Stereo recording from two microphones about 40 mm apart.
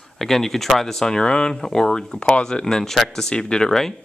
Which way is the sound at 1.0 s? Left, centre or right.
Left.